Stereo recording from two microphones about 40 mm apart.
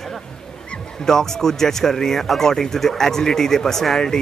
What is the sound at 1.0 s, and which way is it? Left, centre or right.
Speech, centre.